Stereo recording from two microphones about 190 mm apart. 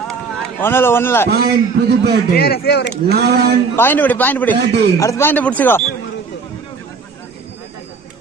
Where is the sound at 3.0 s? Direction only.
60° right (ahead or behind).